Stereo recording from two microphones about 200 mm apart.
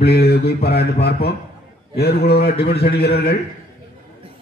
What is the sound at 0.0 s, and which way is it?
Speech, 55° left (ahead or behind).